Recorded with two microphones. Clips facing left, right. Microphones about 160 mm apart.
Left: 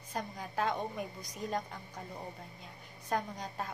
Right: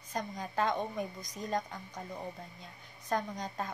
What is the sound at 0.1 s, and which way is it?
Speech, 5° left (ahead or behind).